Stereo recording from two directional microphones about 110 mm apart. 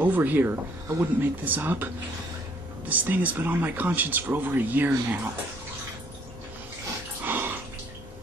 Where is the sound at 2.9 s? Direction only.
15° right (ahead or behind).